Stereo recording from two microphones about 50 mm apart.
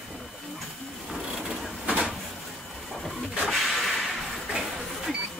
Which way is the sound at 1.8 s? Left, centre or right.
Right.